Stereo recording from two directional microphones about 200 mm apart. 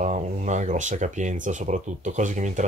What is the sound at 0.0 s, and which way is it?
Speech, 35° right (ahead or behind).